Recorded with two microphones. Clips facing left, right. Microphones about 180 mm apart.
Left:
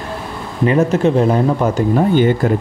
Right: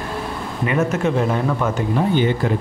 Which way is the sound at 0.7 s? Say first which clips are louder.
Left 6 dB; 35° left (ahead or behind).